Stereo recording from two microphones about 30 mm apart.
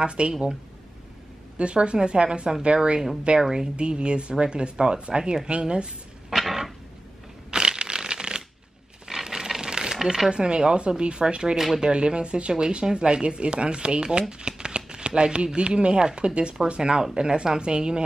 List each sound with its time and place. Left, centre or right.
0.0 s speech: right
1.6 s speech: right
3.3 s a woman's voice: centre
3.7 s speech: right
6.3 s a sound: centre
7.5 s shuffling cards: right
9.0 s a sound: centre
10.3 s speech: right
11.5 s speech: centre
11.8 s speech: right